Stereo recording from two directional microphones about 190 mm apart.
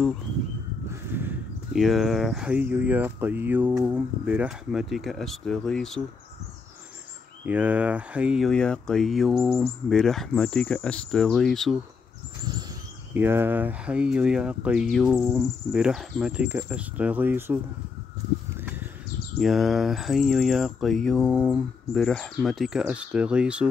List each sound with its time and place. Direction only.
0.8 s speech: 10° right (ahead or behind)
7.4 s speech: 5° right (ahead or behind)
13.1 s speech: 10° right (ahead or behind)
18.6 s a sound: 10° right (ahead or behind)
19.3 s speech: centre (ahead or behind)